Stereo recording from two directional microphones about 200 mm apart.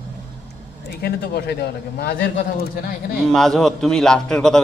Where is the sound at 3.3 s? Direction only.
Centre (ahead or behind).